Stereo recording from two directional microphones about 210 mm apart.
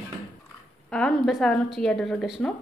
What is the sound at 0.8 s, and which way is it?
A woman's voice, 5° left (ahead or behind).